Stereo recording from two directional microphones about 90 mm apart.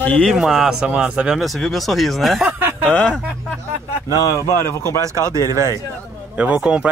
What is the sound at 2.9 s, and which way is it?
Speech, 10° left (ahead or behind).